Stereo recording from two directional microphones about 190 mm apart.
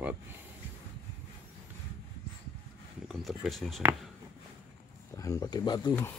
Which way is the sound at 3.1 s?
Centre (ahead or behind).